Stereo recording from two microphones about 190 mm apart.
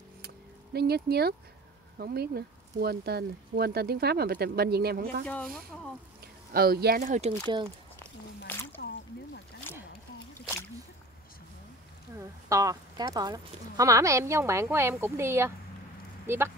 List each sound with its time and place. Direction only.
0.7 s speech: 55° right (ahead or behind)
5.2 s speech: 5° left (ahead or behind)
6.5 s speech: 55° right (ahead or behind)
8.5 s a sound: 10° left (ahead or behind)
12.2 s speech: 15° right (ahead or behind)